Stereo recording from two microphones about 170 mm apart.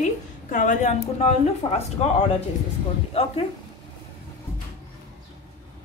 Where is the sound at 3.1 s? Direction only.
35° left (ahead or behind).